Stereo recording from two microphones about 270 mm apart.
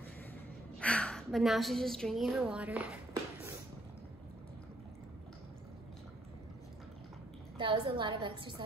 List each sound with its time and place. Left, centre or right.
0.7 s a woman's voice: centre
7.5 s a woman's voice: centre